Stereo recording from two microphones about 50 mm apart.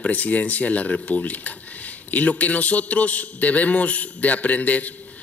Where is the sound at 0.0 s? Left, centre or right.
Left.